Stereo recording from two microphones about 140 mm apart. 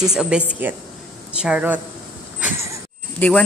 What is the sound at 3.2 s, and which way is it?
Speech, 10° left (ahead or behind).